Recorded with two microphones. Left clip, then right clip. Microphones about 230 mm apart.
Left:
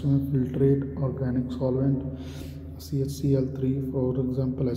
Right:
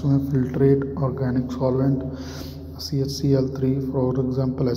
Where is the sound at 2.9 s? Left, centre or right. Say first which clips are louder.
Right 4 dB; centre.